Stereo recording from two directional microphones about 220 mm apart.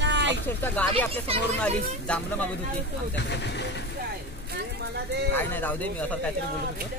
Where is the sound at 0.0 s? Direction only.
55° right (ahead or behind).